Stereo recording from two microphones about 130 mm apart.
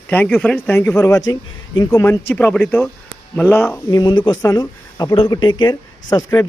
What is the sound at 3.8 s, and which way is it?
Speech, 35° left (ahead or behind).